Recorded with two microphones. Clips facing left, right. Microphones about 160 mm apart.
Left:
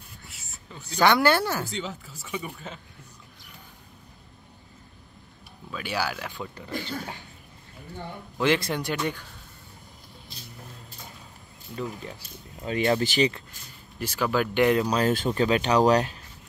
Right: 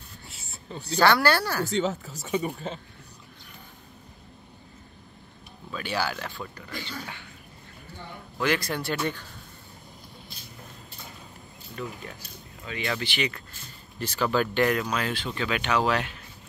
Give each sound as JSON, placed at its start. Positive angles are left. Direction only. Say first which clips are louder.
{"t": 0.3, "sound": "a sound", "louder": "right 8 dB", "side_deg": -30}
{"t": 0.9, "sound": "speech", "louder": "left 1 dB", "side_deg": 20}
{"t": 1.7, "sound": "speech", "louder": "right 8 dB", "side_deg": -45}
{"t": 5.7, "sound": "speech", "louder": "even", "side_deg": 10}
{"t": 6.7, "sound": "speech", "louder": "left 7 dB", "side_deg": 40}
{"t": 8.4, "sound": "speech", "louder": "left 3 dB", "side_deg": 25}
{"t": 11.7, "sound": "speech", "louder": "left 3 dB", "side_deg": 25}
{"t": 12.6, "sound": "speech", "louder": "left 8 dB", "side_deg": 40}
{"t": 13.3, "sound": "speech", "louder": "even", "side_deg": 15}
{"t": 14.8, "sound": "speech", "louder": "left 6 dB", "side_deg": 35}